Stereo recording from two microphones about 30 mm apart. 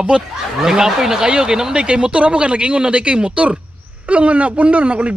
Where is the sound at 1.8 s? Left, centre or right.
Right.